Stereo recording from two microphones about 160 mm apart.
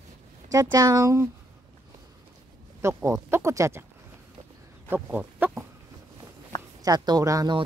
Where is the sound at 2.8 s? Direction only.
15° right (ahead or behind).